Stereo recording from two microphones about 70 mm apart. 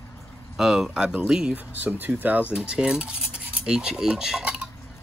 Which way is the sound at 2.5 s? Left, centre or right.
Centre.